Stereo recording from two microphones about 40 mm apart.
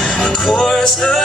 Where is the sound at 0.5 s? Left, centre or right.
Centre.